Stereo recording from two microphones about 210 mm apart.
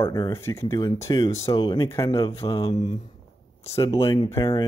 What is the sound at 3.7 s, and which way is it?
Speech, 25° left (ahead or behind).